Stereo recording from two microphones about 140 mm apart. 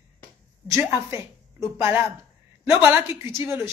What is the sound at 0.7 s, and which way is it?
A woman's voice, 20° right (ahead or behind).